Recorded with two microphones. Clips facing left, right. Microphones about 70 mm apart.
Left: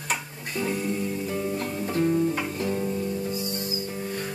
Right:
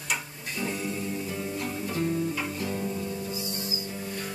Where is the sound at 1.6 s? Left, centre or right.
Left.